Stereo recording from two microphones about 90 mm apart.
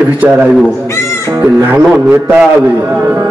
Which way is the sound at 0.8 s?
30° left (ahead or behind).